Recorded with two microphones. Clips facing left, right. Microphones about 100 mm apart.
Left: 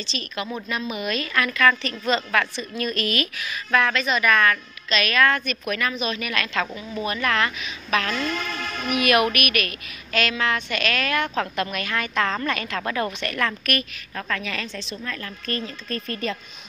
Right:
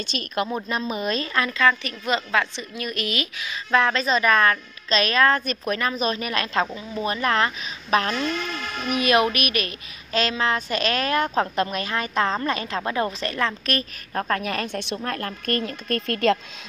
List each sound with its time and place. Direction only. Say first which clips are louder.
0.0 s speech: right 4 dB; 50° right (ahead or behind)
0.5 s a woman's voice: right 2 dB; 30° right (ahead or behind); by 16.3 s 70° right (ahead or behind)